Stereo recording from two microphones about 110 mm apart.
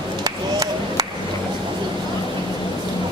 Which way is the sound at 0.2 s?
35° right (ahead or behind).